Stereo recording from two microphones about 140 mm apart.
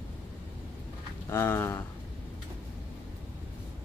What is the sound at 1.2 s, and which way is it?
Speech, 20° left (ahead or behind).